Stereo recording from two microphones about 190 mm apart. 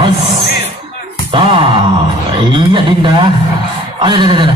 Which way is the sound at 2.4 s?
25° right (ahead or behind).